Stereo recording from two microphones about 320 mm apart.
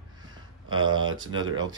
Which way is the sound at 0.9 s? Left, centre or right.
Centre.